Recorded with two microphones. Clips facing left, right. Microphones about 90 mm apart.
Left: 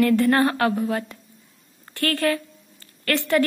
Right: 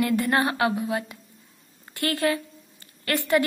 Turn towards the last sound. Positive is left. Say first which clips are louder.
# left 1 dB
turn(degrees=-20)  # may be behind; listen again after turning